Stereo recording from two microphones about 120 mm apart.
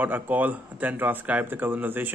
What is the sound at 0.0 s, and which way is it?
A man's voice, 15° right (ahead or behind).